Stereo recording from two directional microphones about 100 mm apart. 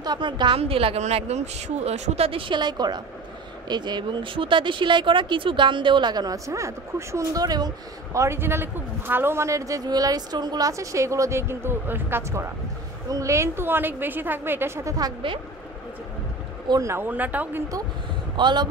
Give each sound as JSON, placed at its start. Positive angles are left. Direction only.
{"t": 0.0, "sound": "a woman's voice", "side_deg": -45}
{"t": 0.6, "sound": "a woman's voice", "side_deg": -70}
{"t": 16.8, "sound": "a woman's voice", "side_deg": -25}
{"t": 18.3, "sound": "speech", "side_deg": -50}